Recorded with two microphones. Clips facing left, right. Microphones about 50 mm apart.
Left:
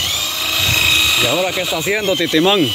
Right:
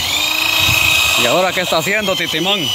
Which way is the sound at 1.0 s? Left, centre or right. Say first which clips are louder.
Right 2 dB; right.